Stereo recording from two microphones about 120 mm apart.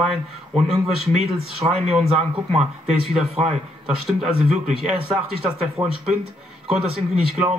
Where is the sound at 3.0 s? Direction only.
Centre (ahead or behind).